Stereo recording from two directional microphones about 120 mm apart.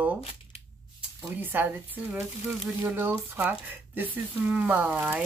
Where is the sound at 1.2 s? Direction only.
15° right (ahead or behind).